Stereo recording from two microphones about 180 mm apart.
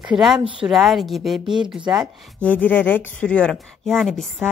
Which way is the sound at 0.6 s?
Centre (ahead or behind).